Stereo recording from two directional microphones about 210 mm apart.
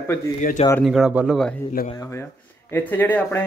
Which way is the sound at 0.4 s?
35° left (ahead or behind).